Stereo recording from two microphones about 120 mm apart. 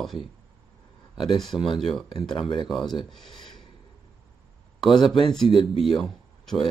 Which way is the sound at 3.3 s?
40° left (ahead or behind).